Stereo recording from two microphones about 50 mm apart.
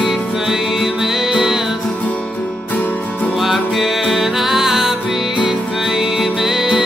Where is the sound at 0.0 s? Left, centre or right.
Centre.